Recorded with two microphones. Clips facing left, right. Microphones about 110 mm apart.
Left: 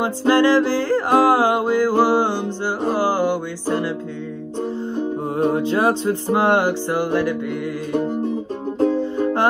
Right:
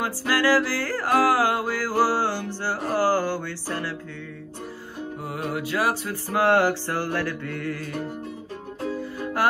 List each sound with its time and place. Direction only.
0.0 s music: 25° left (ahead or behind)
4.9 s music: 25° left (ahead or behind)